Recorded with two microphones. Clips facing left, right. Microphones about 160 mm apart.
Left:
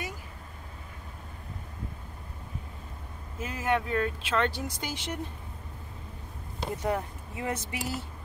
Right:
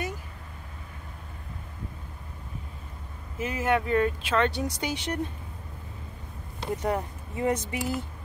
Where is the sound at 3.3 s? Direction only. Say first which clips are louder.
Right 6 dB; 70° right (ahead or behind).